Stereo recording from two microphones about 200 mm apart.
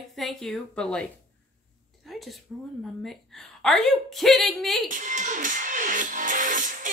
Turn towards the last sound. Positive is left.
turn(degrees=-40)  # may be behind; listen again after turning